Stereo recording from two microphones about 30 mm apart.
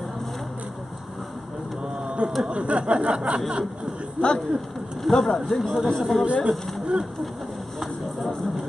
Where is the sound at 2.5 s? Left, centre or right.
Right.